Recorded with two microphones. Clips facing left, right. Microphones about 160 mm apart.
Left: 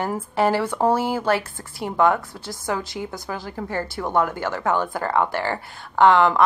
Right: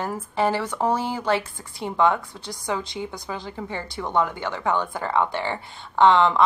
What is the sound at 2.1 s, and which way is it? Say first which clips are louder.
A woman's voice: left 2 dB; 20° right (ahead or behind).